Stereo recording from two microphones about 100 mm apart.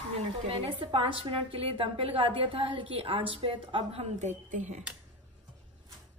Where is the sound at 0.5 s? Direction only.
65° right (ahead or behind); by 4.1 s 80° right.